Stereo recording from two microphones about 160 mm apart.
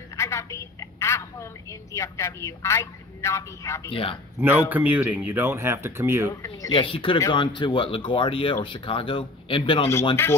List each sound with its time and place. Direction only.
0.1 s a woman's voice: 20° left (ahead or behind)
3.9 s speech: 35° left (ahead or behind)
4.4 s speech: 10° right (ahead or behind)
6.7 s speech: 30° left (ahead or behind)